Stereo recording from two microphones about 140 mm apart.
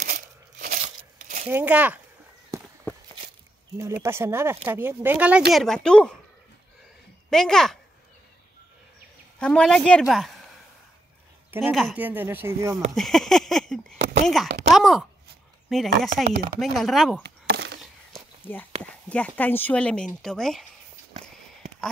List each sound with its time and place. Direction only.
0.0 s a sound: 85° right; by 1.5 s 60° right (ahead or behind)
1.5 s speech: 10° right (ahead or behind)
3.7 s speech: 20° right (ahead or behind); by 6.1 s 5° left (ahead or behind)
7.2 s a woman's voice: 5° left (ahead or behind)
9.4 s speech: 5° left (ahead or behind)
11.9 s speech: 10° right (ahead or behind)
12.9 s a sound: 5° left (ahead or behind)
15.7 s speech: centre (ahead or behind)
18.4 s speech: 15° left (ahead or behind)